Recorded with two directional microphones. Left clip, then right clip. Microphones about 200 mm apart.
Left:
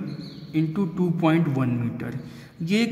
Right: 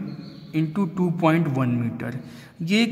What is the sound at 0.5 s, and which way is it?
A man's voice, 25° right (ahead or behind).